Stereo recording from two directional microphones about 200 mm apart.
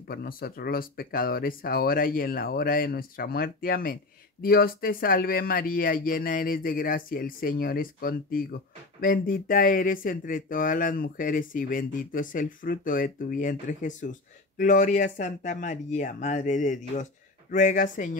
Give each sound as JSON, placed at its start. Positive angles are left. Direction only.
{"t": 0.1, "sound": "speech", "side_deg": 50}